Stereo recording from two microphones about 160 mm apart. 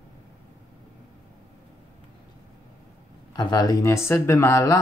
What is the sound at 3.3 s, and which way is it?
Speech, 25° left (ahead or behind).